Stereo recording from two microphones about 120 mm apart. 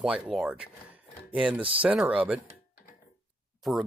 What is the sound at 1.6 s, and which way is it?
Speech, 50° right (ahead or behind).